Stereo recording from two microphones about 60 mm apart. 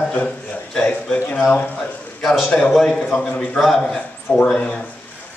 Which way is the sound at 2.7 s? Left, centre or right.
Centre.